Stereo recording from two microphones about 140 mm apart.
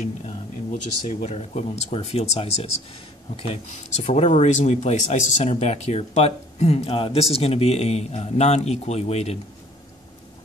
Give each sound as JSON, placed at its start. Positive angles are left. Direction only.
{"t": 0.0, "sound": "speech", "side_deg": 65}